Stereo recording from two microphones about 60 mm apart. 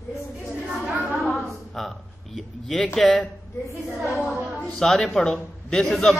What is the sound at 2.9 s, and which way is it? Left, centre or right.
Speech, centre.